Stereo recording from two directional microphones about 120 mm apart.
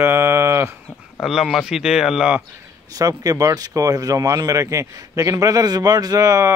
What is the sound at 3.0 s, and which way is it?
Speech, 30° right (ahead or behind).